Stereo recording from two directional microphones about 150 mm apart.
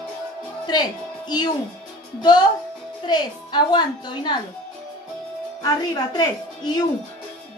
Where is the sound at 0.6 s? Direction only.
30° left (ahead or behind).